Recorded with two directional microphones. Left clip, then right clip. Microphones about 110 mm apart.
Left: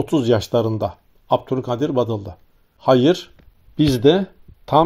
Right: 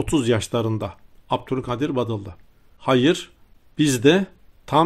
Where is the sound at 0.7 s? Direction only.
35° right (ahead or behind).